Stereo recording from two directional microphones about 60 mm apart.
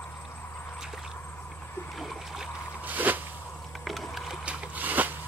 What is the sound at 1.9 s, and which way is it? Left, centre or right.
Splash, centre.